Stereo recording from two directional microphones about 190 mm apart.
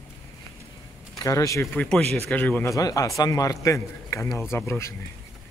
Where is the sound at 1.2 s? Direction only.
15° left (ahead or behind).